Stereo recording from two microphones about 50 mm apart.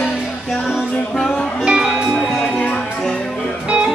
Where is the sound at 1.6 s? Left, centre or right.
Centre.